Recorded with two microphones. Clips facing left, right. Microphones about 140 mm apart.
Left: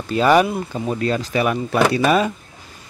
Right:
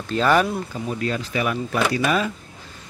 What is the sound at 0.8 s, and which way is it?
Speech, 35° left (ahead or behind).